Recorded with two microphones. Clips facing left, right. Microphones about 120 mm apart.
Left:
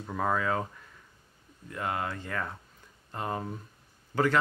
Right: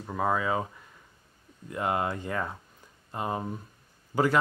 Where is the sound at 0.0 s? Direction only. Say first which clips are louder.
Right 1 dB; 10° right (ahead or behind).